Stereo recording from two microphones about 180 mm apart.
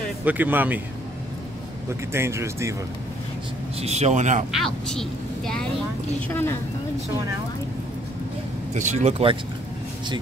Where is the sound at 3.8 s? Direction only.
35° right (ahead or behind).